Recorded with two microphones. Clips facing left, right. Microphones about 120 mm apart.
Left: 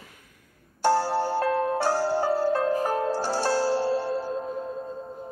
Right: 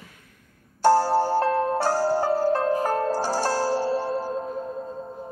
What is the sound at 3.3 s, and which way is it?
Zither, 45° right (ahead or behind).